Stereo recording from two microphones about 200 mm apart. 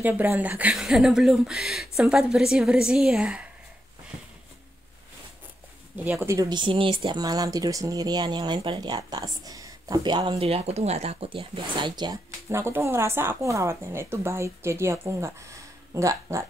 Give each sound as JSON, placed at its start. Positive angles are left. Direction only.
{"t": 0.0, "sound": "speech", "side_deg": -10}
{"t": 6.0, "sound": "speech", "side_deg": -15}